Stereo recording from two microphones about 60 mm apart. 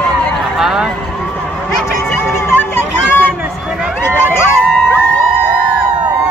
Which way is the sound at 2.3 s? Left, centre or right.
Left.